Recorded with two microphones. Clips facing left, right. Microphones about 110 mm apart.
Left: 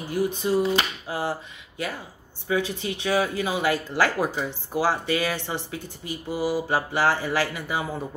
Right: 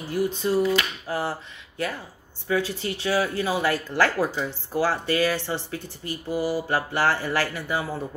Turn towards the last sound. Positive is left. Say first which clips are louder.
# even
turn(degrees=15)  # may be behind; listen again after turning